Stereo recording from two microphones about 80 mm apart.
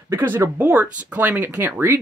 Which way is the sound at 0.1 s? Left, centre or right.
Right.